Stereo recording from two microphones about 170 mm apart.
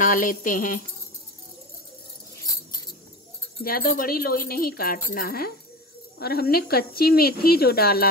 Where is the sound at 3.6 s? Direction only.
55° left (ahead or behind).